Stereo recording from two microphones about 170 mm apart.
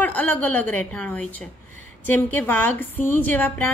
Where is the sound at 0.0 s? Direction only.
10° left (ahead or behind).